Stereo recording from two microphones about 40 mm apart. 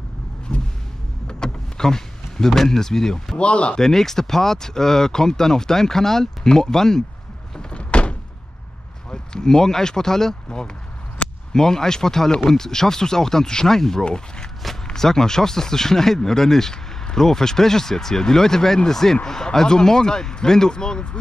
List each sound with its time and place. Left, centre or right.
0.5 s vehicle: centre
1.2 s power windows: centre
3.3 s speech: left
3.7 s speech: centre
7.7 s door: left
9.1 s speech: centre
11.2 s a sound: left
11.5 s speech: centre